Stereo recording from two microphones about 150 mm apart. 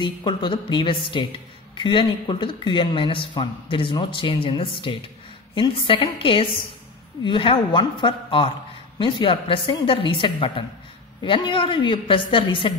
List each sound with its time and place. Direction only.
0.0 s speech: 30° left (ahead or behind)